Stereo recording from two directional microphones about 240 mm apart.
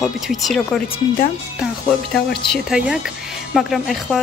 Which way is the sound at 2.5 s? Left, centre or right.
Centre.